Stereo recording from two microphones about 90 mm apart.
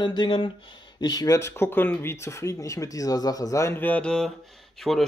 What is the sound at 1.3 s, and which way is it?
Speech, 30° left (ahead or behind).